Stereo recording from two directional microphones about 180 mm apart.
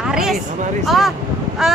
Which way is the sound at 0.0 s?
5° right (ahead or behind).